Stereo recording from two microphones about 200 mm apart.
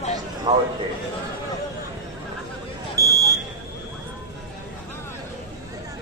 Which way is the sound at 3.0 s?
15° right (ahead or behind).